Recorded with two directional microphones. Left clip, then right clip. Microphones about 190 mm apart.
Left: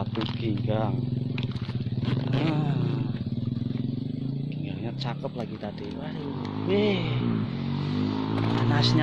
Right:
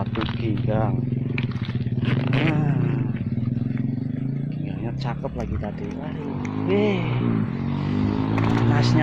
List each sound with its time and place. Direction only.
2.0 s vehicle: centre (ahead or behind)
6.7 s a sound: 10° left (ahead or behind)
8.1 s vehicle: 50° right (ahead or behind)
8.7 s speech: 5° left (ahead or behind)